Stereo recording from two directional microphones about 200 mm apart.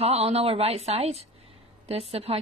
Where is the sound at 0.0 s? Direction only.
30° right (ahead or behind).